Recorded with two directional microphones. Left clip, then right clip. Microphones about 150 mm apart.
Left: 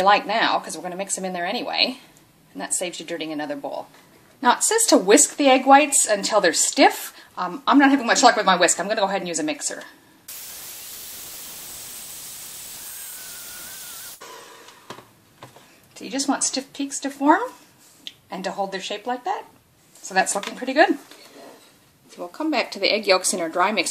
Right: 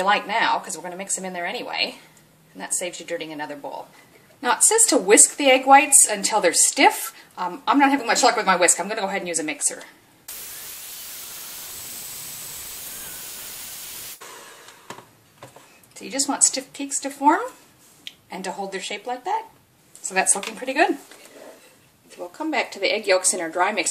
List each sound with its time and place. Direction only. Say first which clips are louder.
0.0 s a woman's voice: left 2 dB; 40° left (ahead or behind)
16.0 s a woman's voice: right 1 dB; 30° left (ahead or behind)
22.5 s speech: left 1 dB; 45° left (ahead or behind)